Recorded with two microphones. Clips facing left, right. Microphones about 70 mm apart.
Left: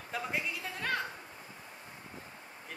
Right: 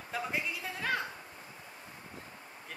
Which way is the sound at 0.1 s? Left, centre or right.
Centre.